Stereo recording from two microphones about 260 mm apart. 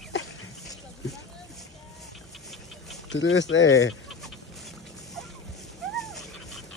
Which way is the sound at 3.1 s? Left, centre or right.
Left.